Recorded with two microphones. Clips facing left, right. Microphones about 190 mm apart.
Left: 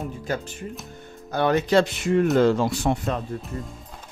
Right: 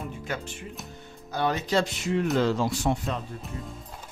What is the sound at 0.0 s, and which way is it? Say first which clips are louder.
Music: left 5 dB; 40° left (ahead or behind).